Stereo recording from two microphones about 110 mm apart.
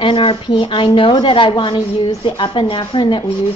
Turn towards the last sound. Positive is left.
turn(degrees=45)  # may be behind; listen again after turning